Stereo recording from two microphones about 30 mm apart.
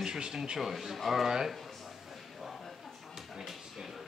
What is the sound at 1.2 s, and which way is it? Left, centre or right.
Speech, centre.